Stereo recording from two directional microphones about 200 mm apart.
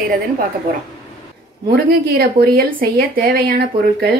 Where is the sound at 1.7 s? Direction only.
50° right (ahead or behind).